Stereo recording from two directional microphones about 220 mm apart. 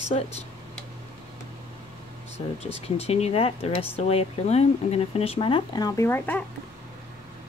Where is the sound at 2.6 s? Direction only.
30° left (ahead or behind); by 6.4 s 10° left (ahead or behind).